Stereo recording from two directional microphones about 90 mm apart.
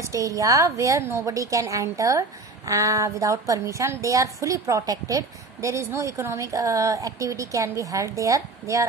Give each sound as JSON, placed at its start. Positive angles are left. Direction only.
{"t": 0.1, "sound": "a woman's voice", "side_deg": -35}